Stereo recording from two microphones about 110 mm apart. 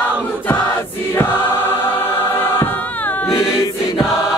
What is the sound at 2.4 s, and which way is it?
Choir, 20° left (ahead or behind).